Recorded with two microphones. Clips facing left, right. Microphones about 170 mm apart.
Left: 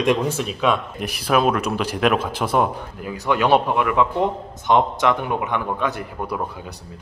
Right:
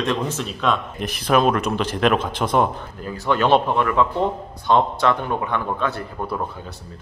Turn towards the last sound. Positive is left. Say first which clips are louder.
# even
turn(degrees=15)  # may be behind; listen again after turning